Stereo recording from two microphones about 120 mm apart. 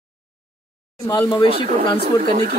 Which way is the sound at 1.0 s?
35° left (ahead or behind).